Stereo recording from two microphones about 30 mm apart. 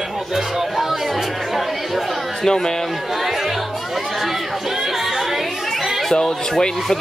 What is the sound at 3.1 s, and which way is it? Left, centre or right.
Chatter, centre.